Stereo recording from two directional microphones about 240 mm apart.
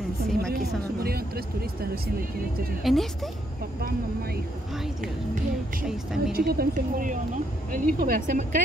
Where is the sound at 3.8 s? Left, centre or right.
Right.